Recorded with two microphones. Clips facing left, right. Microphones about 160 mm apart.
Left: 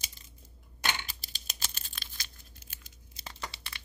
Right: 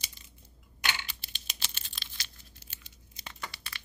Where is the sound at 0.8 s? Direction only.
40° left (ahead or behind).